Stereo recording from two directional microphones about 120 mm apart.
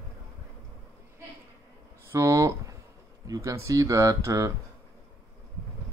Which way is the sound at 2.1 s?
25° right (ahead or behind).